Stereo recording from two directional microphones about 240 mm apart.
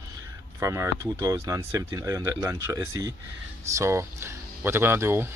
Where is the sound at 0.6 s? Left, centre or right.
Centre.